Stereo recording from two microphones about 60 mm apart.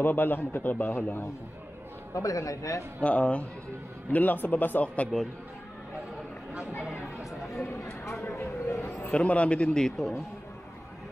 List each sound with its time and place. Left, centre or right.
0.0 s a man's voice: left
2.1 s a man's voice: left
3.0 s a man's voice: left
8.1 s a sound: left
9.1 s a man's voice: left